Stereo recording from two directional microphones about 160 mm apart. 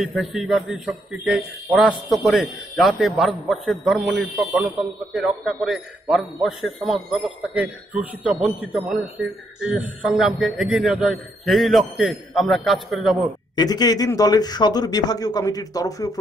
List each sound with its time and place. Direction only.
0.0 s speech: centre (ahead or behind)
13.6 s speech: 25° left (ahead or behind)